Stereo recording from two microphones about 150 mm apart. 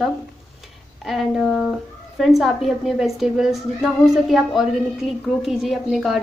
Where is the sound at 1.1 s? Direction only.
Centre (ahead or behind).